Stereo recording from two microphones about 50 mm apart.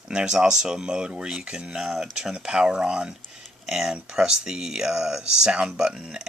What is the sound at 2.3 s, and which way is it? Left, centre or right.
Speech, centre.